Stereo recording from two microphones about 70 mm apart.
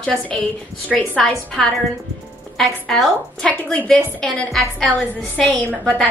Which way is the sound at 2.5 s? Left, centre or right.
Centre.